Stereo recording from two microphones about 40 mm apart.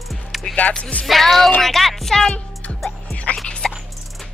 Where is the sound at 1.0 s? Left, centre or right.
Centre.